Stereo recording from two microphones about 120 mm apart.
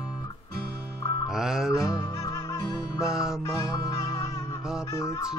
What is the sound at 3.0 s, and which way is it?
Music, 5° right (ahead or behind).